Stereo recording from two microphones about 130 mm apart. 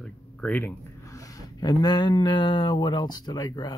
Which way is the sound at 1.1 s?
25° left (ahead or behind).